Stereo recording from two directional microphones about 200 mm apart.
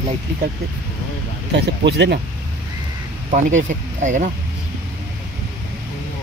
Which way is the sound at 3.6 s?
40° right (ahead or behind).